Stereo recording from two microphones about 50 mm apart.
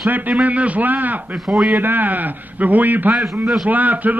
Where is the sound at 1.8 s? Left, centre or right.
Right.